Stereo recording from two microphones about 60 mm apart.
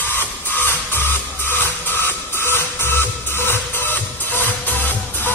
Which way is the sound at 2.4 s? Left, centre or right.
Left.